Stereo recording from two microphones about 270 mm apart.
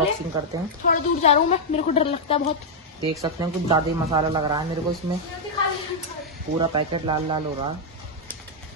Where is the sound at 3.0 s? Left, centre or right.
Centre.